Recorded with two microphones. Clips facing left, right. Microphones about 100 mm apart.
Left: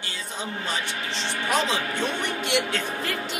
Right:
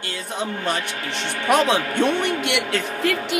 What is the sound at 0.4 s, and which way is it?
A man's voice, 60° right (ahead or behind).